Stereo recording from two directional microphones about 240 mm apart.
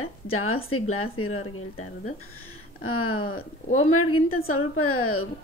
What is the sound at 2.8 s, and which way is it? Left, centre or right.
A woman's voice, left.